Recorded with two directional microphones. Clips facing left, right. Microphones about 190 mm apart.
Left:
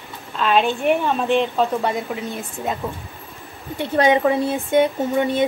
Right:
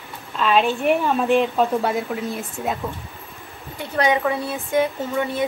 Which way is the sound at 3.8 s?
30° left (ahead or behind).